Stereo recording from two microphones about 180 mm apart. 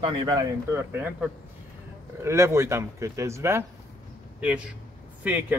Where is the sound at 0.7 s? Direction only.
10° right (ahead or behind).